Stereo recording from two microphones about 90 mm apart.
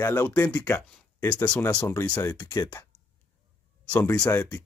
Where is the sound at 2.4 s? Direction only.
40° left (ahead or behind).